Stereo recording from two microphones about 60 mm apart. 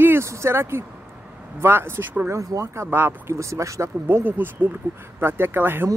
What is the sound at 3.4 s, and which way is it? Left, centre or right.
Speech, right.